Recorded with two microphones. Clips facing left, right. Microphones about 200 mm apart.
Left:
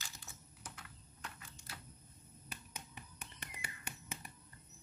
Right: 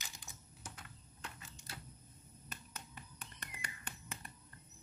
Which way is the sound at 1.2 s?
25° right (ahead or behind).